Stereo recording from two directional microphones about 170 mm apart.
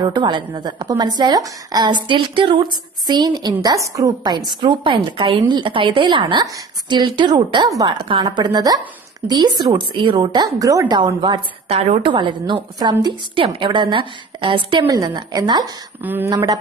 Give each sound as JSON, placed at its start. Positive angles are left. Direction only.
{"t": 0.0, "sound": "a woman's voice", "side_deg": -25}
{"t": 16.0, "sound": "a woman's voice", "side_deg": -10}